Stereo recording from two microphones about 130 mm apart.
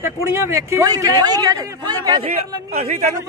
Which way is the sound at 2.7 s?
60° right (ahead or behind).